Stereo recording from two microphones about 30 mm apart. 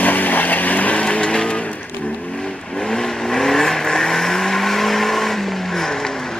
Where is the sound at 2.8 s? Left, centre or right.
Centre.